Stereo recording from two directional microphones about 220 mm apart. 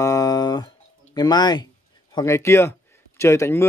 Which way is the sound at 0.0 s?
15° left (ahead or behind).